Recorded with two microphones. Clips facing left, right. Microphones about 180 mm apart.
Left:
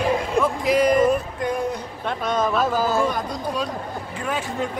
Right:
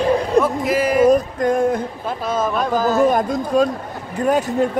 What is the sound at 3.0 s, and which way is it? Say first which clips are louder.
Music: right 7 dB; 50° right (ahead or behind).